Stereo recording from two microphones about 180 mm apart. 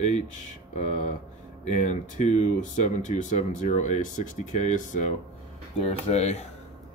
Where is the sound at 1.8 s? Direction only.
40° left (ahead or behind).